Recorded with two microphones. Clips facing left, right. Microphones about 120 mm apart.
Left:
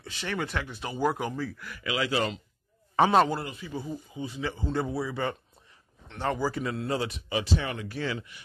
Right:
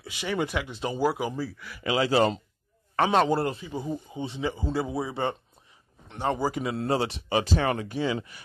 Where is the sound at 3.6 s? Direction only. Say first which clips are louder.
Right 3 dB; 20° right (ahead or behind).